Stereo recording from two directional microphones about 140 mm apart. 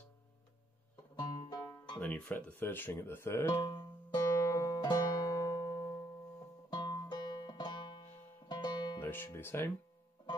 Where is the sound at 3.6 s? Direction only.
30° left (ahead or behind).